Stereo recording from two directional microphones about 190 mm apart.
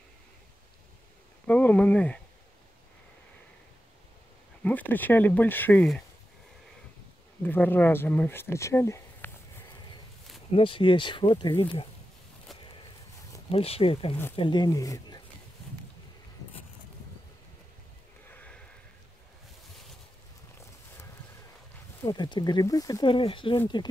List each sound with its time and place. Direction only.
1.5 s speech: 5° left (ahead or behind)
4.6 s speech: 10° left (ahead or behind)
7.4 s speech: 10° left (ahead or behind)
10.5 s speech: 25° left (ahead or behind)
13.5 s speech: 30° left (ahead or behind)
18.3 s sniff: 10° left (ahead or behind)
22.0 s speech: 20° left (ahead or behind)